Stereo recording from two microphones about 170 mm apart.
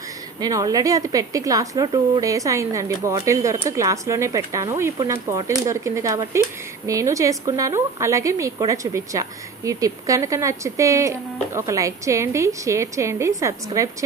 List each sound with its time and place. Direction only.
0.4 s a woman's voice: 20° right (ahead or behind)